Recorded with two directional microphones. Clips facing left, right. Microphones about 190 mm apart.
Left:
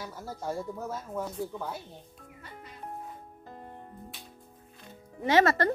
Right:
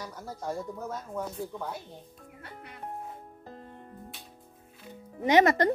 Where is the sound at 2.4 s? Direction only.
65° right (ahead or behind).